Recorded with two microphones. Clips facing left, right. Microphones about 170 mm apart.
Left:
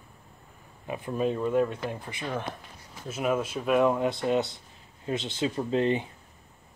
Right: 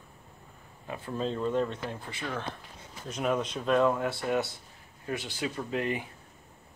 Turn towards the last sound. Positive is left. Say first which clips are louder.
# left 6 dB
turn(degrees=30)  # may be behind; listen again after turning